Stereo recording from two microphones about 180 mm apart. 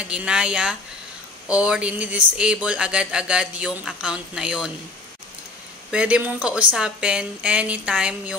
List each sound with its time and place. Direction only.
0.0 s speech: 5° right (ahead or behind)
5.9 s speech: 5° right (ahead or behind)